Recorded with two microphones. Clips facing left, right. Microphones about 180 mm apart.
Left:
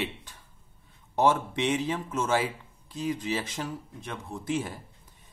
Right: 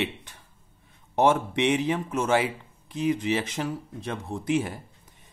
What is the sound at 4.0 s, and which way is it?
Speech, 30° right (ahead or behind).